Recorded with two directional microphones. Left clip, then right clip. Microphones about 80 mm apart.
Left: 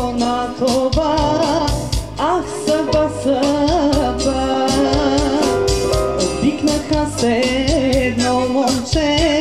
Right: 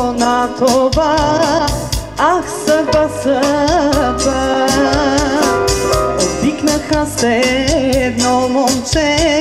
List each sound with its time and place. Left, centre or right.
0.0 s music: right